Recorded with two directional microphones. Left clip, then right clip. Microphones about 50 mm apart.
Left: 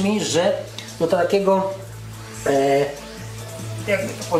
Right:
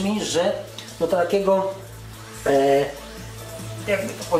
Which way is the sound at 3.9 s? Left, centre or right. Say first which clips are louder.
Left 2 dB; left.